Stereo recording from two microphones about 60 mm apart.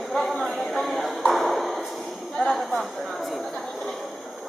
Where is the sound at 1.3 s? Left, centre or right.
Centre.